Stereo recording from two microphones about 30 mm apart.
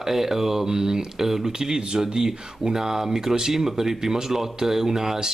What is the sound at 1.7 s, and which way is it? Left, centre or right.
Speech, right.